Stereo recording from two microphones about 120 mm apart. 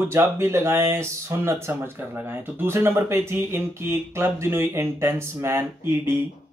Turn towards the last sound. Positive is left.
turn(degrees=-20)  # may be behind; listen again after turning